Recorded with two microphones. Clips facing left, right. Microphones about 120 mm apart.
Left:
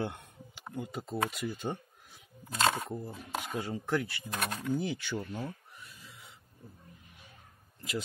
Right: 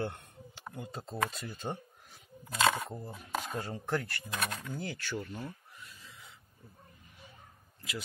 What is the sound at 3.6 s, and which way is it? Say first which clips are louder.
Speech: left 5 dB; 10° left (ahead or behind).